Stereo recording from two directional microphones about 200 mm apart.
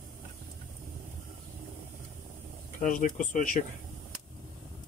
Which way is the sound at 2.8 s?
40° left (ahead or behind).